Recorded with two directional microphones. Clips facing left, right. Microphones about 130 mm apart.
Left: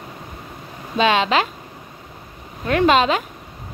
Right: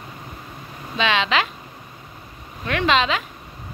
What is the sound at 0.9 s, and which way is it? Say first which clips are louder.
Speech: left 4 dB; 45° left (ahead or behind).